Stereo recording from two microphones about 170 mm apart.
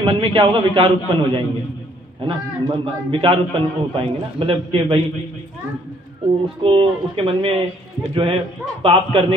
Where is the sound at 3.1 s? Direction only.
30° right (ahead or behind).